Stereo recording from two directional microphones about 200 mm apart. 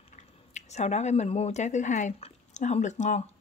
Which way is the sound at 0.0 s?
35° left (ahead or behind).